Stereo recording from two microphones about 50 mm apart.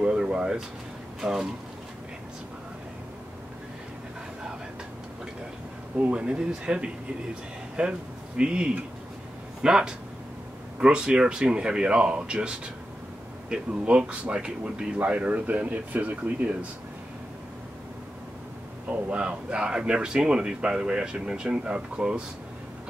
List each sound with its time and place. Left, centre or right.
0.0 s a sound: centre
1.2 s speech: centre
5.9 s speech: right
13.8 s speech: right
18.9 s speech: right